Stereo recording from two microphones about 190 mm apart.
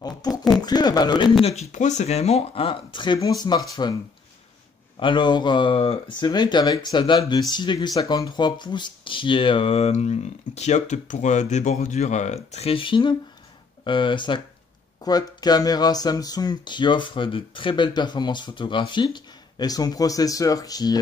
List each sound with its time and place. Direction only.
0.6 s speech: 20° left (ahead or behind)
1.4 s speech: 35° left (ahead or behind)
5.0 s speech: 25° left (ahead or behind)